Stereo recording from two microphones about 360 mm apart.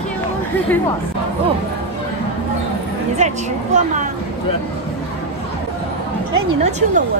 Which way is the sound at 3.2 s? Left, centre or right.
Centre.